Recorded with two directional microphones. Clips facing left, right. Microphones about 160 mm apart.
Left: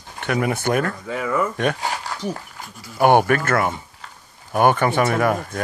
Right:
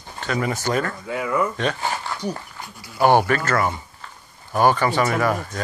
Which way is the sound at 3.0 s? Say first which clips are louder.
Left 2 dB; 55° left (ahead or behind).